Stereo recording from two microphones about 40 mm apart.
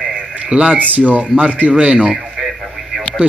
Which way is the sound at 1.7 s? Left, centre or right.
Right.